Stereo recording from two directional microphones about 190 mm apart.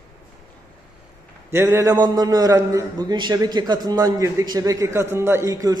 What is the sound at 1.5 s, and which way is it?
A man's voice, 15° right (ahead or behind).